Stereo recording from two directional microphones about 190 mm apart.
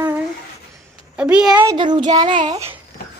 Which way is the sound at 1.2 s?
5° right (ahead or behind).